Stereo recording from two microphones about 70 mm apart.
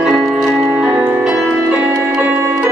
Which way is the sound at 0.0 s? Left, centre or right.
Centre.